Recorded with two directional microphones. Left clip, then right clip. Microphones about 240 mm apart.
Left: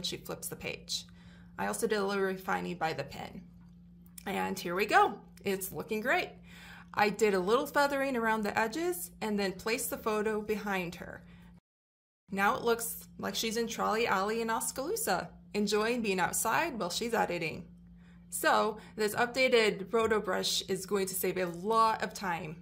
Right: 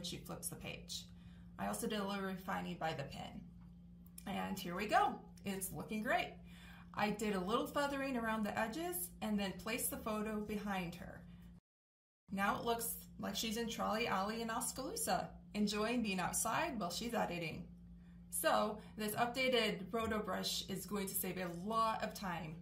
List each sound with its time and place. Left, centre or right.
0.0 s speech: left
12.3 s speech: left